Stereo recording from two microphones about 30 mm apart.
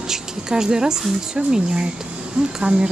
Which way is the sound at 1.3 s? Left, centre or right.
Right.